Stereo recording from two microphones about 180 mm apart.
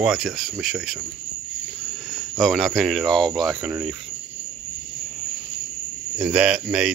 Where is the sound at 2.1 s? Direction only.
Centre (ahead or behind).